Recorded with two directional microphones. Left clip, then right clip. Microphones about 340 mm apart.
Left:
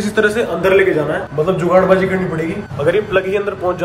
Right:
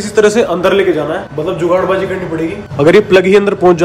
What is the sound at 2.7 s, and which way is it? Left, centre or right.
A man's voice, right.